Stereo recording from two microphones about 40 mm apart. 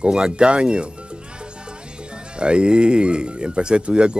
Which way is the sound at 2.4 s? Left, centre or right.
Right.